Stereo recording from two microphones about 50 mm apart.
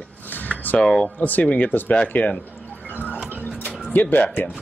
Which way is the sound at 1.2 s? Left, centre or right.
Left.